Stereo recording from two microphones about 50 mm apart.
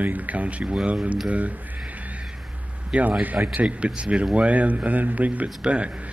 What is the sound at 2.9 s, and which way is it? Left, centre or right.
Speech, right.